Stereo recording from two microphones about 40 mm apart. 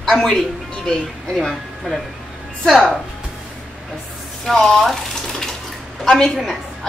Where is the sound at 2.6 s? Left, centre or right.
Centre.